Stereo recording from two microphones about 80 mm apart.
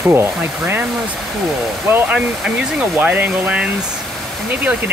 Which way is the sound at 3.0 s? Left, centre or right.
Centre.